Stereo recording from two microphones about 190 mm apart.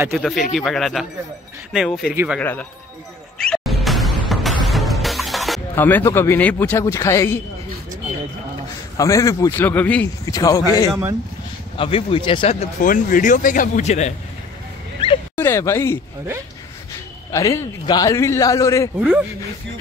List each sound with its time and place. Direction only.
0.1 s speech: centre (ahead or behind)
3.3 s music: centre (ahead or behind)
5.8 s speech: 10° left (ahead or behind)
8.9 s speech: 15° left (ahead or behind)
10.2 s speech: 20° left (ahead or behind)
10.9 s speech: 15° right (ahead or behind)
11.7 s speech: 30° left (ahead or behind)
12.8 s speech: 45° left (ahead or behind)
15.3 s speech: 15° left (ahead or behind)
17.3 s speech: 15° left (ahead or behind)
18.9 s speech: 10° right (ahead or behind)